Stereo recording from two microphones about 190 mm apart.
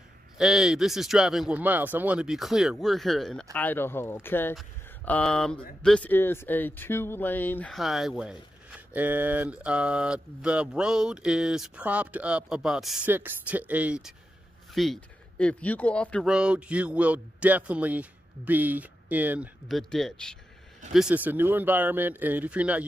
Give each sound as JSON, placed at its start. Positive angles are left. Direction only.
{"t": 0.4, "sound": "speech", "side_deg": 0}